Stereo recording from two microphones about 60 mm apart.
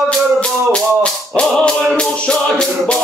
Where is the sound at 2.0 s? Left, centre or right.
Centre.